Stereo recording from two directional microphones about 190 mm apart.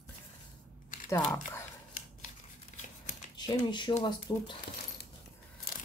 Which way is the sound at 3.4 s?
25° left (ahead or behind).